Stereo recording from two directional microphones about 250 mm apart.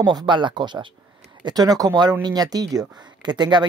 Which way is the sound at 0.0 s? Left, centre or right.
Centre.